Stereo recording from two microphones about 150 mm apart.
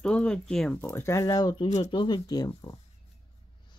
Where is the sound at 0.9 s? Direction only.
20° left (ahead or behind).